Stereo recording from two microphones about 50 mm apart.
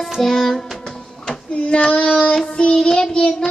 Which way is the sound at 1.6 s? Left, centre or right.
Left.